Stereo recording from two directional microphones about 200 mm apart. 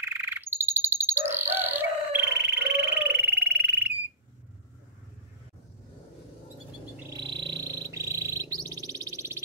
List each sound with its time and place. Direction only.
0.0 s bird: 10° right (ahead or behind)
7.2 s bird: 20° right (ahead or behind)